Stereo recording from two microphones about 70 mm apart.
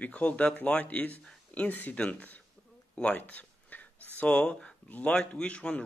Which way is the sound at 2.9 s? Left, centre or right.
Centre.